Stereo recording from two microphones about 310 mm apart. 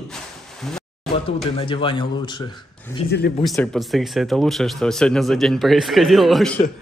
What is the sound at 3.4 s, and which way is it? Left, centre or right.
A man's voice, centre.